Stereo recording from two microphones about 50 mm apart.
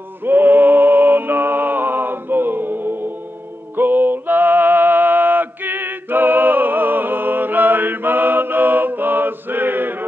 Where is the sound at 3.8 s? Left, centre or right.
Right.